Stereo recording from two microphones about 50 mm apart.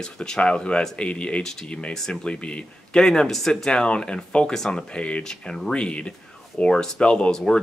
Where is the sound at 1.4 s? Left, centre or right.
Centre.